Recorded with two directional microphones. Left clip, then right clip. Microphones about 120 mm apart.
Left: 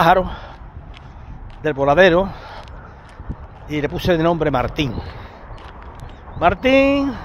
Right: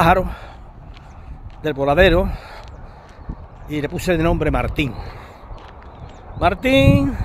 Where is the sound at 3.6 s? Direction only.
25° right (ahead or behind).